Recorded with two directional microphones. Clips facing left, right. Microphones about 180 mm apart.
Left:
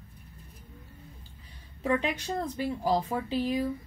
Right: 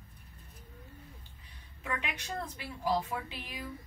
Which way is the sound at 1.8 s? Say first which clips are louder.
Left 10 dB; 35° left (ahead or behind).